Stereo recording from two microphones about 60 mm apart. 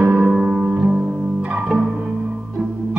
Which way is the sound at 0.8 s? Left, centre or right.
Centre.